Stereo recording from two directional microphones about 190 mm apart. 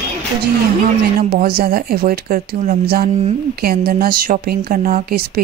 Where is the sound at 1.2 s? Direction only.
50° right (ahead or behind).